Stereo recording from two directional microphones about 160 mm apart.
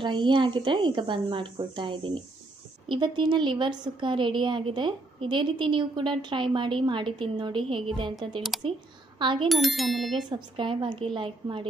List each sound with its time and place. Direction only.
0.0 s a woman's voice: 30° right (ahead or behind)
9.5 s speech: centre (ahead or behind)
10.1 s a woman's voice: 30° right (ahead or behind)